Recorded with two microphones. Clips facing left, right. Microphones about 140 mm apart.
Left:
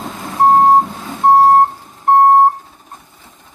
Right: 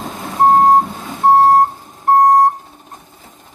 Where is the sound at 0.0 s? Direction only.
Centre (ahead or behind).